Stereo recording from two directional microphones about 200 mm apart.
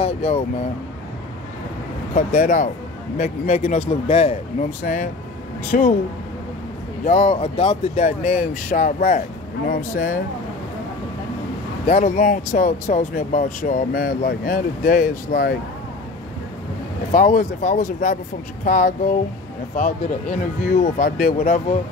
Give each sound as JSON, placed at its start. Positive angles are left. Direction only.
{"t": 0.0, "sound": "speech", "side_deg": 30}
{"t": 2.1, "sound": "speech", "side_deg": 40}
{"t": 7.1, "sound": "speech", "side_deg": 35}
{"t": 11.9, "sound": "speech", "side_deg": 40}
{"t": 17.1, "sound": "speech", "side_deg": 45}